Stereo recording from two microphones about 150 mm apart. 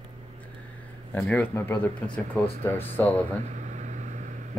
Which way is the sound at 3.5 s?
50° right (ahead or behind).